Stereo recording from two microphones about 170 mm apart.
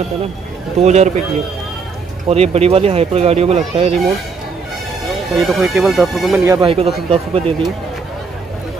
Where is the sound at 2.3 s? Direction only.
35° right (ahead or behind).